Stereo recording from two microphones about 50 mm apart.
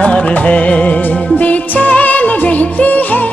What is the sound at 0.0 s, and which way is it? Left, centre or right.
Music, left.